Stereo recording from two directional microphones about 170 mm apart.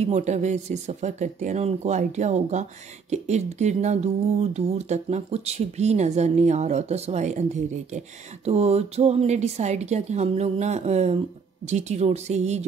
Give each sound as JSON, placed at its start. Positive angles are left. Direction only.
{"t": 0.0, "sound": "speech", "side_deg": -40}